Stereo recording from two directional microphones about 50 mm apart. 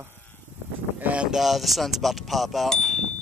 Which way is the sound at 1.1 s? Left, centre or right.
Centre.